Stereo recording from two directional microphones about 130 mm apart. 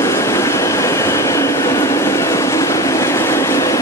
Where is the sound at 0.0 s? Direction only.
20° left (ahead or behind).